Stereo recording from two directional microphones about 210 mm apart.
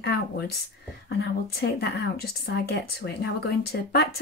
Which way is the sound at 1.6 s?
50° left (ahead or behind).